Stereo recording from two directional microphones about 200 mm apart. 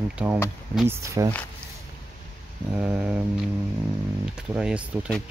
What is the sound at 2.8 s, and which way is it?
Speech, 5° right (ahead or behind).